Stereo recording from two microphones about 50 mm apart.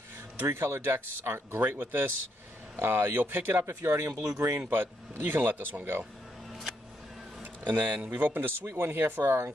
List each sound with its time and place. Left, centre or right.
0.5 s speech: right
0.8 s speech: right
2.8 s speech: right
3.6 s speech: right
4.6 s speech: right
7.6 s speech: right